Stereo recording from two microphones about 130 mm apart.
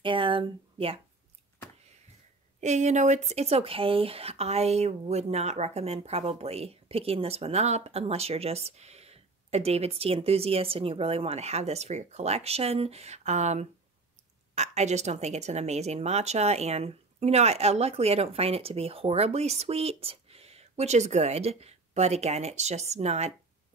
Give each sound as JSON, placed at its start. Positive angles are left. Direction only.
{"t": 0.0, "sound": "speech", "side_deg": -40}
{"t": 2.6, "sound": "speech", "side_deg": -60}